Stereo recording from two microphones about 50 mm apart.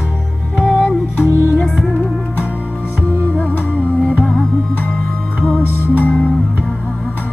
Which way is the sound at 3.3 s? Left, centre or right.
Left.